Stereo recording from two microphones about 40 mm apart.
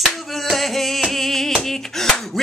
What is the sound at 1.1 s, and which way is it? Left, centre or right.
Clapping, centre.